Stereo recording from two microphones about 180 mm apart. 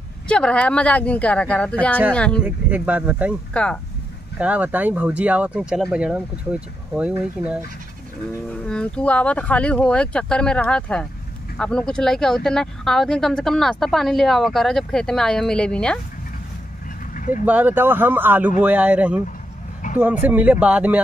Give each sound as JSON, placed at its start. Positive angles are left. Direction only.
{"t": 0.3, "sound": "speech", "side_deg": 5}
{"t": 2.4, "sound": "speech", "side_deg": -10}
{"t": 3.5, "sound": "speech", "side_deg": 5}
{"t": 4.4, "sound": "speech", "side_deg": -10}
{"t": 8.6, "sound": "speech", "side_deg": 5}
{"t": 17.1, "sound": "vehicle", "side_deg": 45}
{"t": 17.5, "sound": "speech", "side_deg": -10}
{"t": 19.8, "sound": "vehicle", "side_deg": 45}
{"t": 20.2, "sound": "speech", "side_deg": -10}